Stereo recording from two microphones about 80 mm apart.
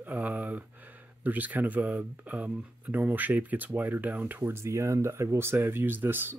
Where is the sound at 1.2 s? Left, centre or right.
Right.